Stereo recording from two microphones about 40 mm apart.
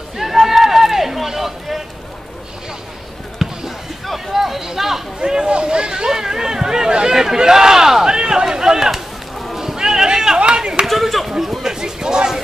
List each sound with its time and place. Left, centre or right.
0.2 s run: centre
3.3 s a sound: centre
5.2 s speech: right
8.9 s chop: centre; by 10.7 s right
10.9 s chop: centre